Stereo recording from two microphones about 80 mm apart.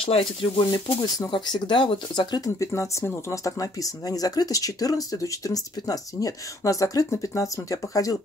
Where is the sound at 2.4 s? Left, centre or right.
Left.